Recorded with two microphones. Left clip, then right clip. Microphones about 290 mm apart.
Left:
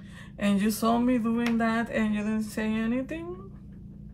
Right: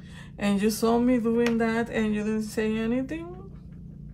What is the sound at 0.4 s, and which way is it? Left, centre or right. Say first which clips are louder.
Speech: right 2 dB; centre.